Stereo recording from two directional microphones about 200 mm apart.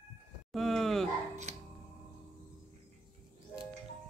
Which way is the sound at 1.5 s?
35° right (ahead or behind).